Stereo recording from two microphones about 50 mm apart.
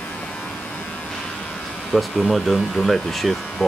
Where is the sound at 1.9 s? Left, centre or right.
Centre.